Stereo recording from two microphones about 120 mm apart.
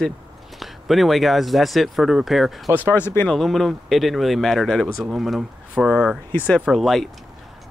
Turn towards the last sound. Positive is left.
turn(degrees=0)  # may be behind; listen again after turning